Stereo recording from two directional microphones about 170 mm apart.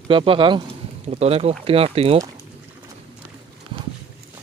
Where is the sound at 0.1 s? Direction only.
30° right (ahead or behind).